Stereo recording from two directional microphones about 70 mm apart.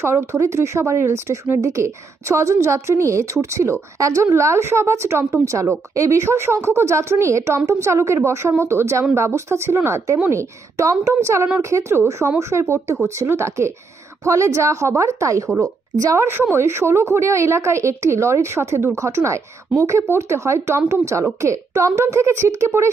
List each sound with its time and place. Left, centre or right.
0.0 s a woman's voice: right
16.2 s a woman's voice: right